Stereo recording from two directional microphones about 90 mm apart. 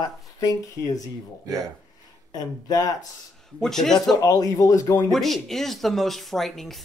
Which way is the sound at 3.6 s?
5° left (ahead or behind).